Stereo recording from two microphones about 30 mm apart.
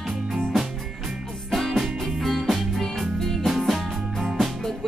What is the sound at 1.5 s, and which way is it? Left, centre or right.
Music, centre.